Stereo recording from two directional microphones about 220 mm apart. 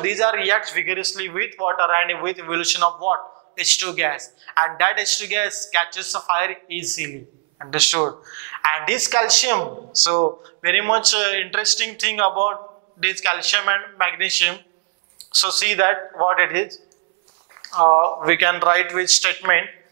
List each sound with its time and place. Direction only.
0.0 s a man's voice: 15° right (ahead or behind); by 8.6 s 30° right (ahead or behind)
8.6 s speech: 10° right (ahead or behind)
17.6 s speech: 25° right (ahead or behind)